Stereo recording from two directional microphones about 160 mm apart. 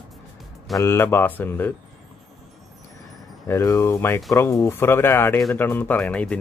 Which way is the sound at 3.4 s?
20° left (ahead or behind).